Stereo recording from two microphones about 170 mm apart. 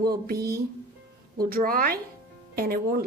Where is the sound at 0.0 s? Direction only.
65° right (ahead or behind).